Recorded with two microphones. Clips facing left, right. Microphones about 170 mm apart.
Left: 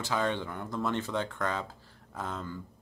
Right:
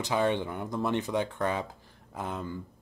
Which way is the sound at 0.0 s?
15° right (ahead or behind).